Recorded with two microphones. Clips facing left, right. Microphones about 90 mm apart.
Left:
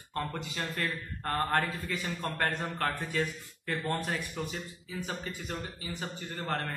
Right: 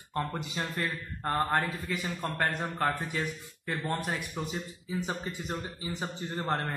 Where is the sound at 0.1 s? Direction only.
15° right (ahead or behind).